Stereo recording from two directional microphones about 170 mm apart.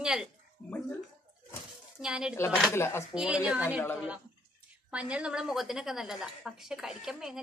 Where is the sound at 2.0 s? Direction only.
5° right (ahead or behind).